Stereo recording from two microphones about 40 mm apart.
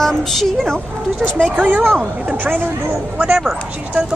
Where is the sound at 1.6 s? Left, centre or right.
Right.